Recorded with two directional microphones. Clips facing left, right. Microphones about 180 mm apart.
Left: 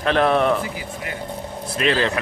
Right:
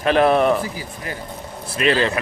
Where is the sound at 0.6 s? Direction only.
35° right (ahead or behind).